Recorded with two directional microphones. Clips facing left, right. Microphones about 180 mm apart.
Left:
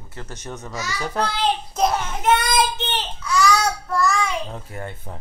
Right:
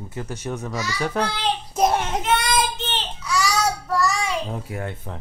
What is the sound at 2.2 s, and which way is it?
Child singing, 45° left (ahead or behind).